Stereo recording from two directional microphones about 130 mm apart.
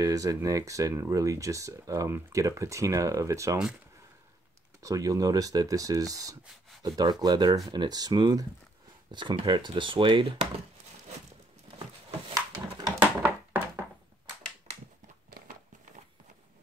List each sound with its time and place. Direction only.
0.0 s speech: 25° right (ahead or behind)
4.8 s speech: 25° right (ahead or behind)
12.8 s a sound: 10° right (ahead or behind)